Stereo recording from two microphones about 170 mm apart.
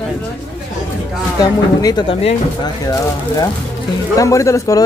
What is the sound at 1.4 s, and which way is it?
A man's voice, 20° left (ahead or behind).